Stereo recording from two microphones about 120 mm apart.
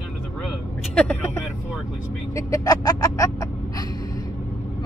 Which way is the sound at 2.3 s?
30° left (ahead or behind).